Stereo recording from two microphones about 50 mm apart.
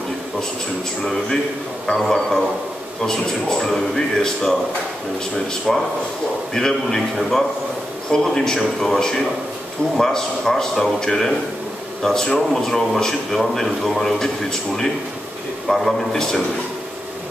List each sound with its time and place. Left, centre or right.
1.9 s speech: centre
5.7 s a man's voice: centre